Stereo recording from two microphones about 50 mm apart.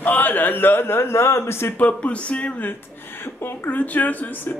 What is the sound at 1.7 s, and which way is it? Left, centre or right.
A man's voice, left.